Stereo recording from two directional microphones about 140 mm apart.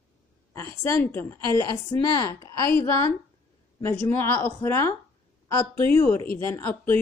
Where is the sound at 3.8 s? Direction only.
15° left (ahead or behind).